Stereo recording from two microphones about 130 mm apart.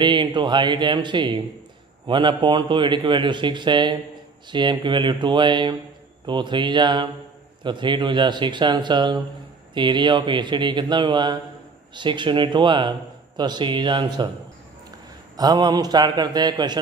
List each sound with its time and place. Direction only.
0.0 s a man's voice: 35° right (ahead or behind)